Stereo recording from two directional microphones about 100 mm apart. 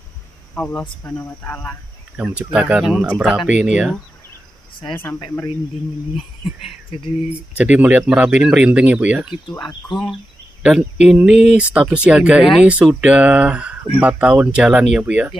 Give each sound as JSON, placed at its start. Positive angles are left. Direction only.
{"t": 0.6, "sound": "speech", "side_deg": 20}
{"t": 2.1, "sound": "speech", "side_deg": -10}
{"t": 6.9, "sound": "speech", "side_deg": 70}
{"t": 7.5, "sound": "speech", "side_deg": -15}
{"t": 9.6, "sound": "speech", "side_deg": 50}
{"t": 10.6, "sound": "speech", "side_deg": -10}